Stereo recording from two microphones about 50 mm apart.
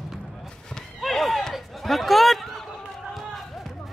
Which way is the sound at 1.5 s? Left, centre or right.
Centre.